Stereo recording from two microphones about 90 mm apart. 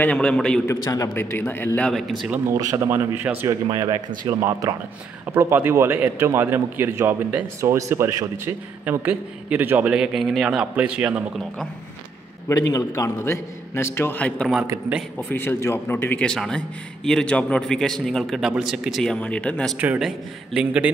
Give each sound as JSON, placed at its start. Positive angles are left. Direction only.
{"t": 0.0, "sound": "a man's voice", "side_deg": 10}
{"t": 1.0, "sound": "a man's voice", "side_deg": 25}
{"t": 1.8, "sound": "speech", "side_deg": 5}
{"t": 2.8, "sound": "speech", "side_deg": -25}
{"t": 3.7, "sound": "speech", "side_deg": -35}
{"t": 5.2, "sound": "speech", "side_deg": -25}
{"t": 7.7, "sound": "speech", "side_deg": -30}
{"t": 9.9, "sound": "a man's voice", "side_deg": 0}
{"t": 12.4, "sound": "a man's voice", "side_deg": 35}
{"t": 14.1, "sound": "a man's voice", "side_deg": 15}
{"t": 16.2, "sound": "a man's voice", "side_deg": 5}
{"t": 19.0, "sound": "a man's voice", "side_deg": 15}
{"t": 20.0, "sound": "a man's voice", "side_deg": -10}